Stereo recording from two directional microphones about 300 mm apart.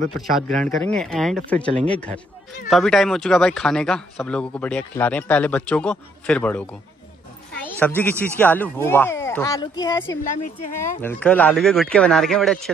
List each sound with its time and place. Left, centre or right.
0.1 s a man's voice: centre